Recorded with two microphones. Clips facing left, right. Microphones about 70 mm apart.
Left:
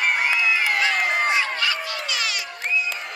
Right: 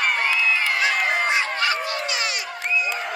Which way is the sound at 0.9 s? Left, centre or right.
Centre.